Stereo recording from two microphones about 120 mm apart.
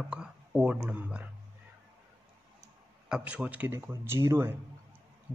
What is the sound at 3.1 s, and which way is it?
Speech, 10° right (ahead or behind).